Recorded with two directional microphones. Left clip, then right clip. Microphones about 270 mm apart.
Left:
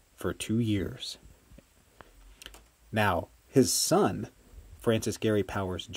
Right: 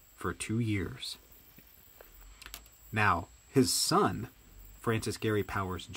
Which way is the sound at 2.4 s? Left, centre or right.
Centre.